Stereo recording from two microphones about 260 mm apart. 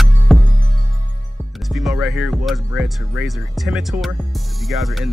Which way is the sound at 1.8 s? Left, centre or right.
Centre.